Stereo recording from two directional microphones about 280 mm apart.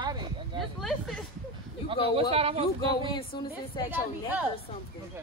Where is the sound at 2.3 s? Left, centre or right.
Right.